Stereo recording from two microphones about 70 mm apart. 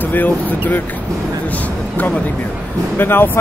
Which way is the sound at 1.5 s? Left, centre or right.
Left.